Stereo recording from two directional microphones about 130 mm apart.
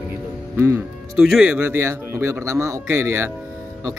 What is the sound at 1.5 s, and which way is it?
Speech, 20° right (ahead or behind).